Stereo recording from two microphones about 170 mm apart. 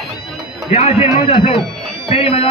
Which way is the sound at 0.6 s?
35° left (ahead or behind).